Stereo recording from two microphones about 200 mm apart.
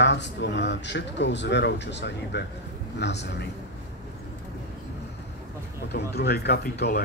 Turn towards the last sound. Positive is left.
turn(degrees=50)  # may be behind; listen again after turning